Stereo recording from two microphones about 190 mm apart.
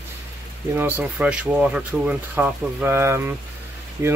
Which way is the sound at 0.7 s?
10° right (ahead or behind).